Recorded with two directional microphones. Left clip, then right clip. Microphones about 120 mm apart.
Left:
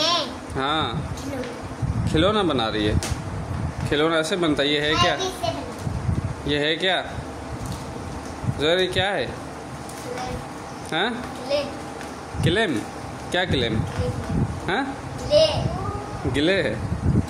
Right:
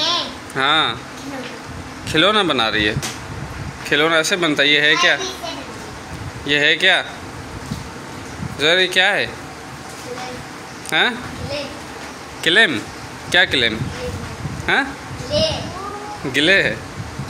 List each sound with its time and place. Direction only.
0.6 s speech: 5° left (ahead or behind)
2.0 s speech: 5° left (ahead or behind)
6.4 s speech: 5° left (ahead or behind)
8.5 s speech: 5° left (ahead or behind)
10.9 s speech: 5° left (ahead or behind)
12.4 s speech: centre (ahead or behind)
16.3 s speech: 5° left (ahead or behind)